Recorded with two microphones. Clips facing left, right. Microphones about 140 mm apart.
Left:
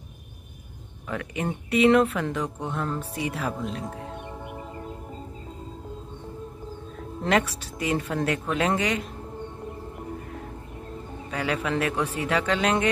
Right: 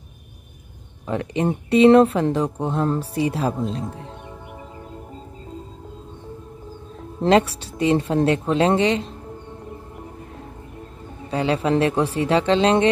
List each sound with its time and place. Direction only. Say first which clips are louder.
1.0 s speech: right 7 dB; 30° right (ahead or behind)
7.2 s speech: right 7 dB; 30° right (ahead or behind)
11.2 s speech: right 7 dB; 30° right (ahead or behind)